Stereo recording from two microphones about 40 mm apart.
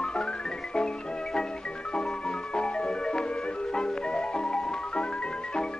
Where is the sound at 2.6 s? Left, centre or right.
Left.